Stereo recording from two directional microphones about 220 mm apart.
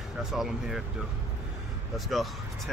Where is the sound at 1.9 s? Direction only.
Centre (ahead or behind).